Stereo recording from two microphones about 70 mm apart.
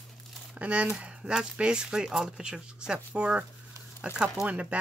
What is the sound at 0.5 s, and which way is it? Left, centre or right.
Speech, centre.